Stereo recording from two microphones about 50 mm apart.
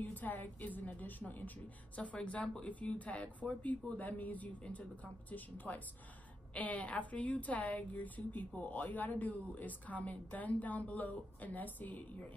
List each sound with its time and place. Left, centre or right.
0.0 s a woman's voice: left
2.0 s a woman's voice: left